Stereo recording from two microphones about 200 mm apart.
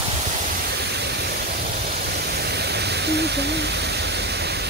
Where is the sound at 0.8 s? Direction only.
55° right (ahead or behind).